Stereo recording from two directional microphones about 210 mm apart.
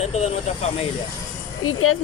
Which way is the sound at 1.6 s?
90° left.